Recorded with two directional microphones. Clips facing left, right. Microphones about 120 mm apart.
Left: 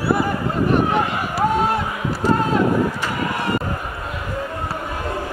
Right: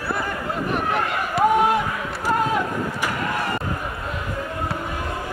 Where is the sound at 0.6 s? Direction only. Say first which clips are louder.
Left 6 dB; centre (ahead or behind).